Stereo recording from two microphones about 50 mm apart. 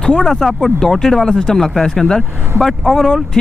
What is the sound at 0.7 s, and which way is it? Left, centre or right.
Speech, centre.